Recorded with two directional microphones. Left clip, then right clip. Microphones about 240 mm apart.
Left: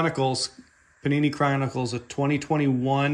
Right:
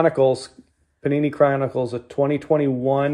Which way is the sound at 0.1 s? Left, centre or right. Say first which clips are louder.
Right 7 dB; left.